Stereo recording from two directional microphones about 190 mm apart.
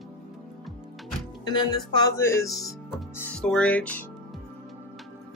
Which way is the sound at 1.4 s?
20° left (ahead or behind).